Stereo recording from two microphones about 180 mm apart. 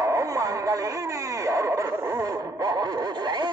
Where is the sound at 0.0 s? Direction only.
20° right (ahead or behind).